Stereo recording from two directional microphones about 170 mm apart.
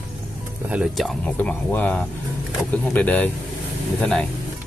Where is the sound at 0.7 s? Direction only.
5° right (ahead or behind).